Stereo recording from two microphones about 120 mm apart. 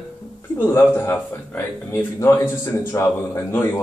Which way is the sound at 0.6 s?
20° left (ahead or behind).